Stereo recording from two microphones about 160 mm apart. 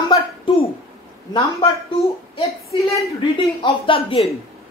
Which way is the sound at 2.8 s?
Centre (ahead or behind).